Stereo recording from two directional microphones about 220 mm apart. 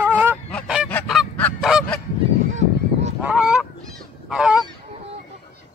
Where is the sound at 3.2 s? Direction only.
5° right (ahead or behind).